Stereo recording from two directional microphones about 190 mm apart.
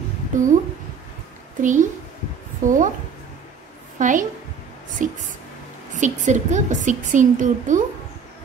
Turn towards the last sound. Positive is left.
turn(degrees=-40)  # may be behind; listen again after turning